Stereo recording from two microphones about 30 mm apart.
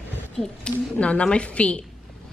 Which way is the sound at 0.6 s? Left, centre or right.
Left.